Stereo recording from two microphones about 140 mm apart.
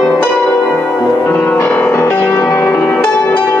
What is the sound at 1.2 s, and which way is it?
Music, 15° left (ahead or behind).